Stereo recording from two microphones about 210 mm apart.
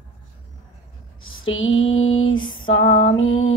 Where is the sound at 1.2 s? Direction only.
70° left (ahead or behind).